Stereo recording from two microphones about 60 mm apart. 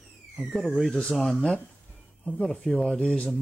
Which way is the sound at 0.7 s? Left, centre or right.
Centre.